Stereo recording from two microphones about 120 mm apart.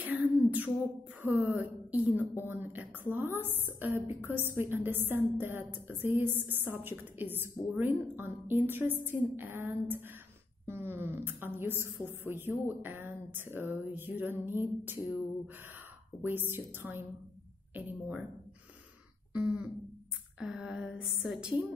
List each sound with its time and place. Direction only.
0.0 s a sound: 15° right (ahead or behind)
1.2 s a woman's voice: 15° right (ahead or behind)
20.3 s a woman's voice: 5° right (ahead or behind)